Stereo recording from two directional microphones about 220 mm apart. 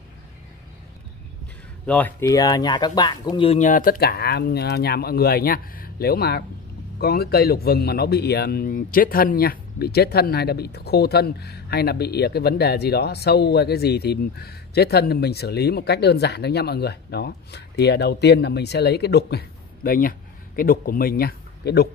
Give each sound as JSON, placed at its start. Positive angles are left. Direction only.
{"t": 1.9, "sound": "a man's voice", "side_deg": 10}